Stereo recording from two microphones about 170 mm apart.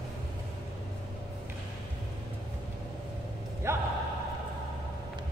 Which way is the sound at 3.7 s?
15° right (ahead or behind).